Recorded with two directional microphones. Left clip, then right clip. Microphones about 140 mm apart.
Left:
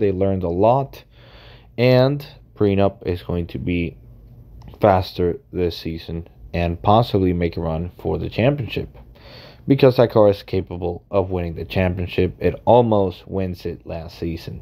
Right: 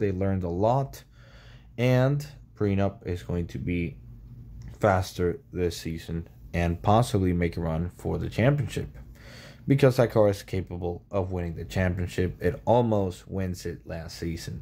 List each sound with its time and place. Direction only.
0.0 s speech: 20° left (ahead or behind)
1.8 s speech: 35° left (ahead or behind)
2.7 s speech: 40° left (ahead or behind); by 14.5 s 20° left (ahead or behind)